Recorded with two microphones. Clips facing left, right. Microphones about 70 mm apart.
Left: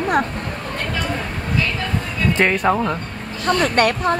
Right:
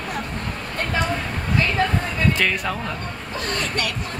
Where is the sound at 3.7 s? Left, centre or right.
Left.